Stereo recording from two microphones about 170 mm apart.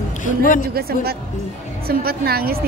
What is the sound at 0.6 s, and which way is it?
A woman's voice, 65° right (ahead or behind).